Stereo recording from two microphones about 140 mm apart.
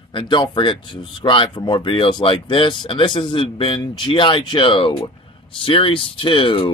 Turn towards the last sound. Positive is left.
turn(degrees=35)  # may be behind; listen again after turning